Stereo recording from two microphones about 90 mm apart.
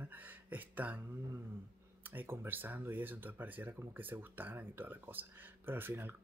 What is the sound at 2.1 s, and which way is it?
Speech, 25° right (ahead or behind).